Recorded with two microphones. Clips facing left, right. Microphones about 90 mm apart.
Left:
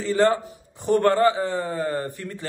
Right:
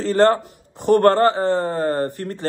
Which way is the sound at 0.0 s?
55° right (ahead or behind).